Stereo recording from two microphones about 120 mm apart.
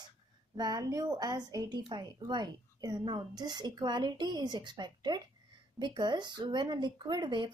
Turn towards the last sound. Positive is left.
turn(degrees=-40)  # may be behind; listen again after turning